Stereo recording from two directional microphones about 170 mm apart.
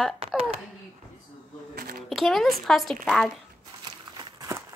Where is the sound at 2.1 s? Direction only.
Centre (ahead or behind).